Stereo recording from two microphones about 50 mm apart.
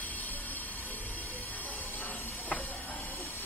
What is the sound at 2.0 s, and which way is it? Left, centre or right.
Hiss, left.